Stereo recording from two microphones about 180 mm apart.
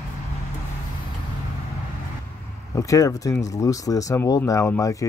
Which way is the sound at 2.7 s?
20° left (ahead or behind).